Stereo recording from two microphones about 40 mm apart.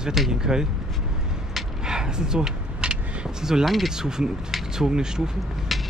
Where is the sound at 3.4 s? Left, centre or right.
Centre.